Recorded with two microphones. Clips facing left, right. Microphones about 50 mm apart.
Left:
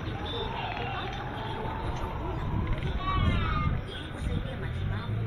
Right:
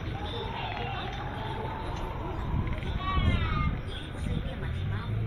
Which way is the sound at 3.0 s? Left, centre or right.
Centre.